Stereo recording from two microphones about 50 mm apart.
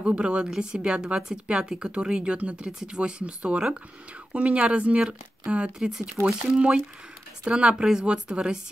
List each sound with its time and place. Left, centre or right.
0.0 s speech: right
5.8 s speech: centre